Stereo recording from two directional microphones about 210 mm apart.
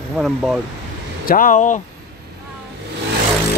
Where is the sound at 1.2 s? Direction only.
40° left (ahead or behind).